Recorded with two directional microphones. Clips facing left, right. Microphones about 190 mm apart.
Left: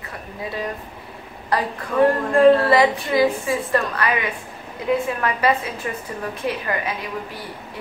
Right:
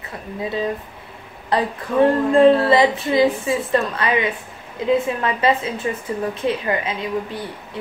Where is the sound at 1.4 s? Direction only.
25° right (ahead or behind).